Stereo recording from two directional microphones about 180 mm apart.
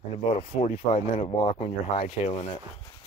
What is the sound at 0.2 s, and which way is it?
Speech, 40° left (ahead or behind).